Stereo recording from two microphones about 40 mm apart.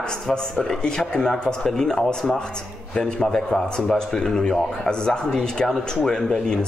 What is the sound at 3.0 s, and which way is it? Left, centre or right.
Speech, centre.